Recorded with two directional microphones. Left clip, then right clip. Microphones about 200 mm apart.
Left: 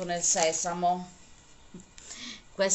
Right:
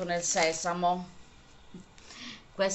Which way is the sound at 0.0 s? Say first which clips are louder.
Left 1 dB; 10° left (ahead or behind).